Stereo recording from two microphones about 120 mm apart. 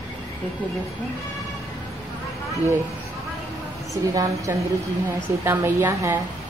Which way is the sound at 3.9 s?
30° right (ahead or behind).